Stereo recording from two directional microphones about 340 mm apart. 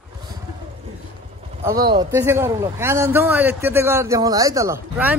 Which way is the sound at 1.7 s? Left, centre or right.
Centre.